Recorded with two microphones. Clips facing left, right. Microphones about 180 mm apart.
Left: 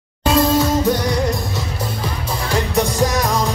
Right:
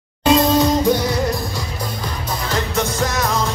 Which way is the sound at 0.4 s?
15° right (ahead or behind).